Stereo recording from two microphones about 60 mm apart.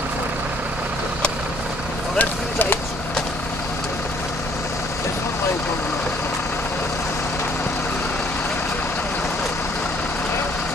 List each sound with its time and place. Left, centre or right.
2.1 s vehicle: left